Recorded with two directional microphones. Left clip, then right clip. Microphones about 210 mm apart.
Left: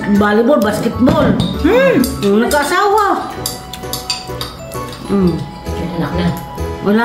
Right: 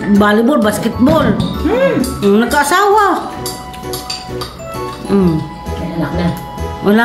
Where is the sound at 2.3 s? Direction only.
50° right (ahead or behind).